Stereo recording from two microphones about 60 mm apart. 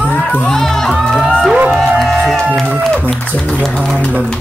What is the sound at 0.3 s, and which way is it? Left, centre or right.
Music, centre.